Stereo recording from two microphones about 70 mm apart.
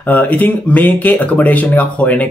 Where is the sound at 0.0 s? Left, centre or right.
Left.